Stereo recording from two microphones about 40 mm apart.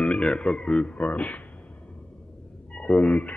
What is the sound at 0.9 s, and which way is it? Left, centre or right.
Speech, left.